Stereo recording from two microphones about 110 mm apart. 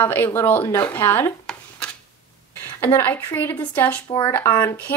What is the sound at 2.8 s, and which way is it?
Speech, 20° left (ahead or behind).